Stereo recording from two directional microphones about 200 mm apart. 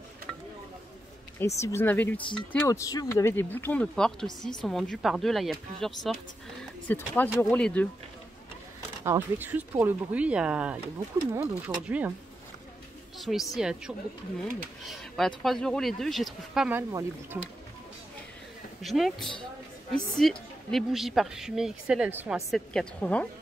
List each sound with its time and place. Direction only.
1.6 s speech: 10° left (ahead or behind)
2.2 s a woman's voice: 20° left (ahead or behind)
9.0 s speech: 10° right (ahead or behind)
13.2 s a woman's voice: centre (ahead or behind)
18.8 s a woman's voice: centre (ahead or behind)